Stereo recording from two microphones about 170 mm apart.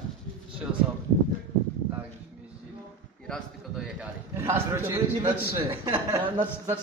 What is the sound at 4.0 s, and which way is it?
A man's voice, 15° right (ahead or behind).